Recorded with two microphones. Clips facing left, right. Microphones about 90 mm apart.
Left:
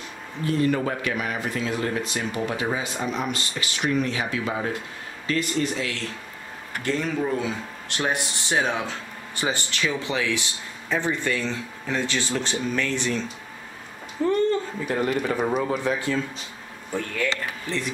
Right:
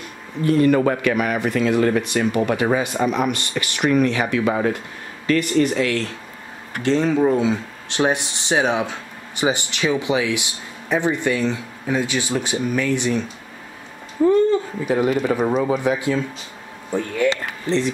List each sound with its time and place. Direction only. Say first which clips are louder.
0.5 s speech: right 7 dB; 65° right (ahead or behind)
6.8 s speech: right 8 dB; 25° right (ahead or behind)
14.2 s speech: right 6 dB; 5° right (ahead or behind)